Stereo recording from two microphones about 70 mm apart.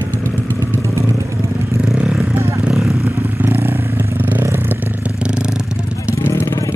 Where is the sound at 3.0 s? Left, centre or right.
Right.